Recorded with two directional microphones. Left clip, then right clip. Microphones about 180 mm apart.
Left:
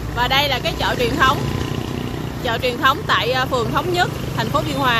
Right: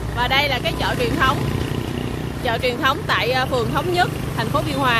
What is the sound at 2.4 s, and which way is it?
Speech, 5° left (ahead or behind).